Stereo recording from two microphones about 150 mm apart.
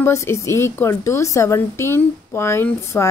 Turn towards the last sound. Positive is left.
turn(degrees=20)  # may be behind; listen again after turning